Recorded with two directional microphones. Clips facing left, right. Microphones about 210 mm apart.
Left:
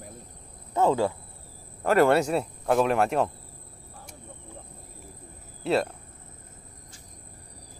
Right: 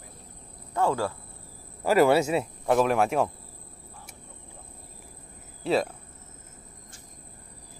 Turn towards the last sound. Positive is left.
turn(degrees=0)  # may be behind; listen again after turning